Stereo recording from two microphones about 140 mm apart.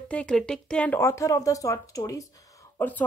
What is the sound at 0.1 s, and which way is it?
A woman's voice, 5° left (ahead or behind).